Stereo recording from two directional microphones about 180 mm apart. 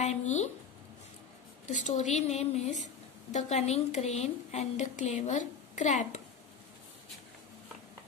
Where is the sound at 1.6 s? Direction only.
45° left (ahead or behind).